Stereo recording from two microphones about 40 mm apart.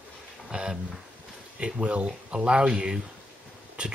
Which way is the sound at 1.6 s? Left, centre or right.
Right.